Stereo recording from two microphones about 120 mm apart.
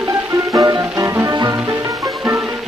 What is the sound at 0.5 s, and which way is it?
Music, 30° right (ahead or behind).